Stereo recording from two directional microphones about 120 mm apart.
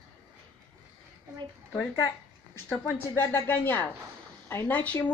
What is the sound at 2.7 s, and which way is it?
A woman's voice, 15° left (ahead or behind).